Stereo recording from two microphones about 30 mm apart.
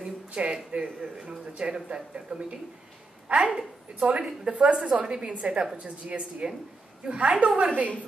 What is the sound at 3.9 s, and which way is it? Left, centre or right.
A woman's voice, right.